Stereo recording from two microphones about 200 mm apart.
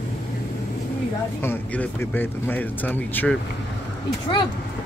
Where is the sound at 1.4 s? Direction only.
10° left (ahead or behind).